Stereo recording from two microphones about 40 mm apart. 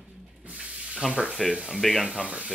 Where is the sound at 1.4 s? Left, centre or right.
Centre.